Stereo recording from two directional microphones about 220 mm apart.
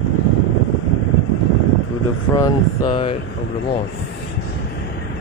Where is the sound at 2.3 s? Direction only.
15° left (ahead or behind).